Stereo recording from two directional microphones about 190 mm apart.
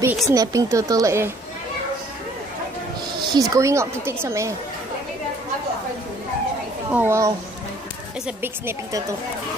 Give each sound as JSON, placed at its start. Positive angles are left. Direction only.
{"t": 0.0, "sound": "speech", "side_deg": -15}
{"t": 3.2, "sound": "speech", "side_deg": -20}
{"t": 6.9, "sound": "speech", "side_deg": -10}
{"t": 8.4, "sound": "speech", "side_deg": -10}